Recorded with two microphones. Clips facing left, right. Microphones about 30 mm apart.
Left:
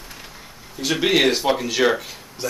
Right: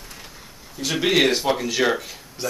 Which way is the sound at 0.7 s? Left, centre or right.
Centre.